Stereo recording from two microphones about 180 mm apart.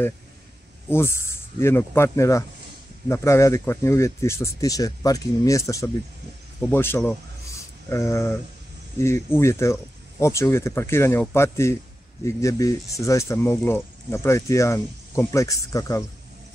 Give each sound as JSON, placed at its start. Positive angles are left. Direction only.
{"t": 0.8, "sound": "speech", "side_deg": 15}